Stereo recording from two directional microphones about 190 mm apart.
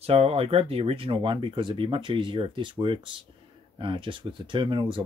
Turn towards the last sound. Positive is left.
turn(degrees=-25)  # may be behind; listen again after turning